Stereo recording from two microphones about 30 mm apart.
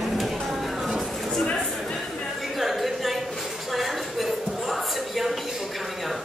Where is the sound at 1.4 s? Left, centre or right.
Left.